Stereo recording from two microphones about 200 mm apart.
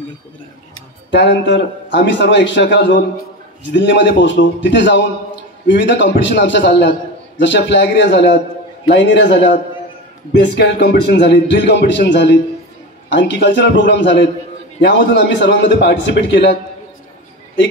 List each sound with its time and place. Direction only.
1.1 s a man's voice: 60° left (ahead or behind)